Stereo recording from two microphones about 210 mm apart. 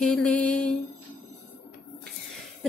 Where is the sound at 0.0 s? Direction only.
5° left (ahead or behind).